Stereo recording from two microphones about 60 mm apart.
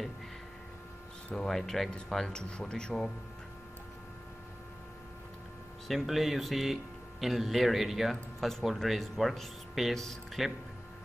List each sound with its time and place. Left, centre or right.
1.3 s speech: centre
5.9 s speech: centre